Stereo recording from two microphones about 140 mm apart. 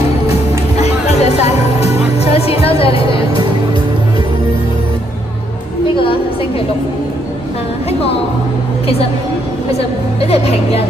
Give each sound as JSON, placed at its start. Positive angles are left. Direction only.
{"t": 0.7, "sound": "music", "side_deg": 50}
{"t": 9.8, "sound": "a woman's voice", "side_deg": 45}